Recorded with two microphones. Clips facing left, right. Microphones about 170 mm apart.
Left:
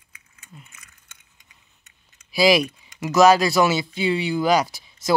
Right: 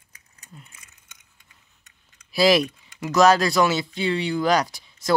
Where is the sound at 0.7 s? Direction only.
30° right (ahead or behind).